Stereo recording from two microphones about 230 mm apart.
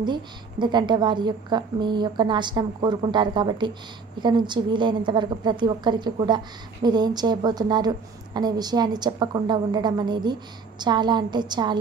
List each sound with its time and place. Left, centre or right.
0.0 s a woman's voice: centre